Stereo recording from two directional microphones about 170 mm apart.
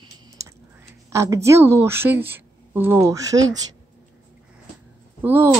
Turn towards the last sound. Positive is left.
turn(degrees=-10)  # may be behind; listen again after turning